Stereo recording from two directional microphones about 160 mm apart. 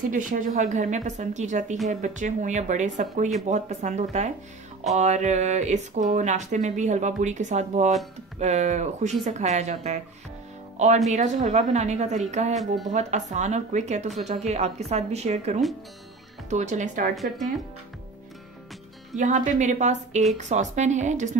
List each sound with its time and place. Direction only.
0.1 s speech: 55° right (ahead or behind)
11.1 s speech: 45° right (ahead or behind)
17.1 s speech: centre (ahead or behind)
19.1 s speech: 50° right (ahead or behind)